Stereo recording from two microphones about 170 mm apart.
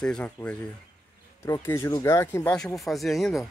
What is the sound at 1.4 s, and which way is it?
Speech, 20° left (ahead or behind).